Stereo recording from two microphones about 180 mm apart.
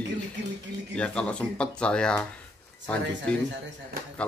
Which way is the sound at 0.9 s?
5° left (ahead or behind).